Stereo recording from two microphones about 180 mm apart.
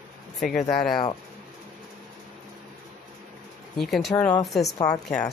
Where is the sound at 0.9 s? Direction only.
25° left (ahead or behind).